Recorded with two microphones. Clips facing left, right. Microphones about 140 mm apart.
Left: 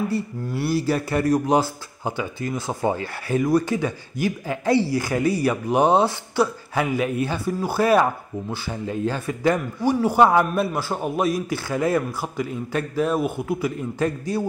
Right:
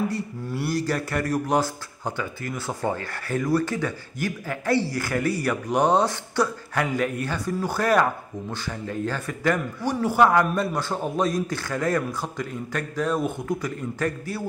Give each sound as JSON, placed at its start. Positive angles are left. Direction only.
{"t": 0.7, "sound": "speech", "side_deg": 15}
{"t": 10.5, "sound": "speech", "side_deg": 5}
{"t": 12.7, "sound": "a man's voice", "side_deg": 20}
{"t": 13.1, "sound": "speech", "side_deg": 10}